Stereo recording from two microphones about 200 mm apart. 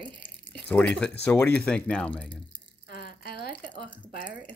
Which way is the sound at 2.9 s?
50° left (ahead or behind).